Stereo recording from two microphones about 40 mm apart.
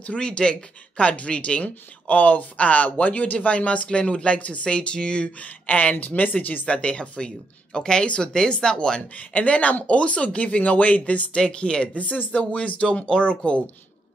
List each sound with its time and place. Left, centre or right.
0.0 s speech: left
1.6 s speech: left
5.4 s speech: left
6.7 s speech: left
9.1 s speech: left
12.0 s speech: left